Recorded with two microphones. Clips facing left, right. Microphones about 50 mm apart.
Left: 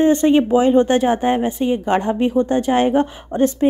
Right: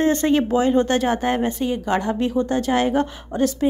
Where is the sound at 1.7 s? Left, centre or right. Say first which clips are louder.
Left 4 dB; left.